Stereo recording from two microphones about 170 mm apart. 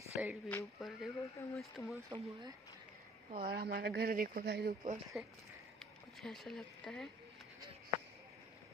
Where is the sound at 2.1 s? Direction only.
25° right (ahead or behind).